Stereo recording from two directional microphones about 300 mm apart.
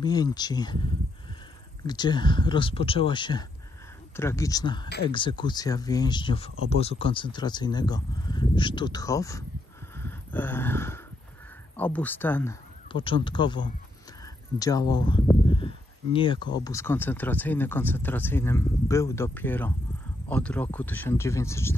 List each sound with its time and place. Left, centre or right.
0.0 s speech: centre
1.9 s speech: centre
4.8 s speech: left
5.1 s speech: centre
9.9 s a sound: centre
11.7 s speech: centre
12.9 s speech: centre